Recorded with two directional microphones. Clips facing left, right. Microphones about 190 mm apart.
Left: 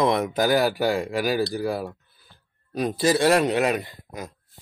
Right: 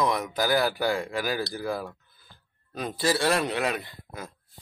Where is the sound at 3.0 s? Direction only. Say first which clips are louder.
Left 5 dB; 20° left (ahead or behind).